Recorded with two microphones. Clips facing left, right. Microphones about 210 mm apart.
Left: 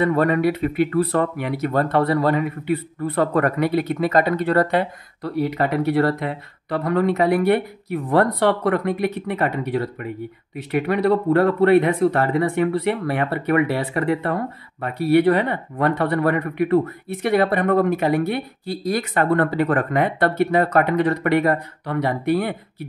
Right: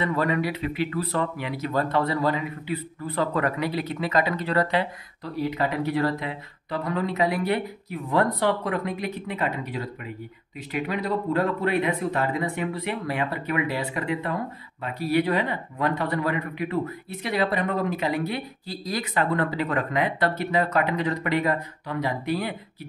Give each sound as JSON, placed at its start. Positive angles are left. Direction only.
{"t": 0.0, "sound": "speech", "side_deg": 55}